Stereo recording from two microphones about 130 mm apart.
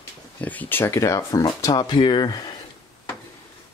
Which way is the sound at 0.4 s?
10° left (ahead or behind).